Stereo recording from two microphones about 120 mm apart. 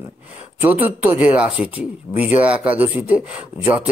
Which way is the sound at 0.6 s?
15° right (ahead or behind).